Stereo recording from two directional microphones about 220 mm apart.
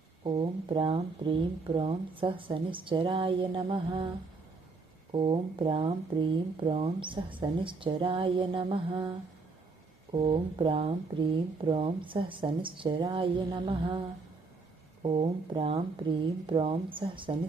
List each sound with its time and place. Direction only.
0.2 s speech: 25° right (ahead or behind)
5.1 s speech: 25° right (ahead or behind)
10.1 s speech: 20° right (ahead or behind)